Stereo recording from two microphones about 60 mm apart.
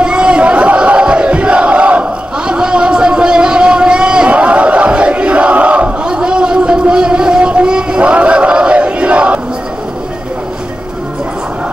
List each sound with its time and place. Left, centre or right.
0.0 s battle cry: centre